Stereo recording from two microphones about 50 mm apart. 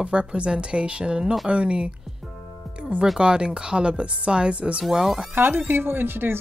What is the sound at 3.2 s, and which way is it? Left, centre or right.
Speech, centre.